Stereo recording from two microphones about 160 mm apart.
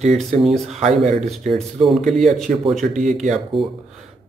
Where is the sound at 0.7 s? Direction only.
45° right (ahead or behind).